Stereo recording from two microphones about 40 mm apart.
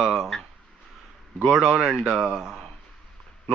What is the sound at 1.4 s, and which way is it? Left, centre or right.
A man's voice, centre.